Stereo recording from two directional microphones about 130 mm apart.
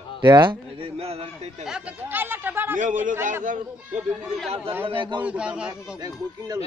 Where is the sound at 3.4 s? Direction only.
70° right (ahead or behind).